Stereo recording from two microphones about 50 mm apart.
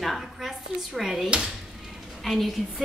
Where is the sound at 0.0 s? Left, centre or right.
Centre.